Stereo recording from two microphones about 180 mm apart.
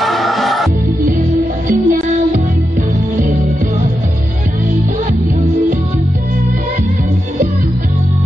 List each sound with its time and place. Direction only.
0.0 s music: centre (ahead or behind)
1.7 s music: 45° right (ahead or behind)